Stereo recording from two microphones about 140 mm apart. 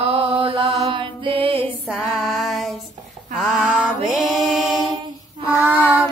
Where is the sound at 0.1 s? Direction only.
40° right (ahead or behind).